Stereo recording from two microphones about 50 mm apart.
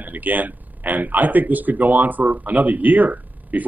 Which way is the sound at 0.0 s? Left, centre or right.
Right.